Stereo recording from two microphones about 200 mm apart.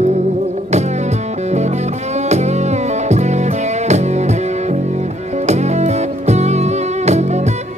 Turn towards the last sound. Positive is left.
turn(degrees=-35)  # may be behind; listen again after turning